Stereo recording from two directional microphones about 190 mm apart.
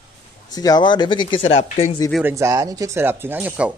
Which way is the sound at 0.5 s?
20° left (ahead or behind).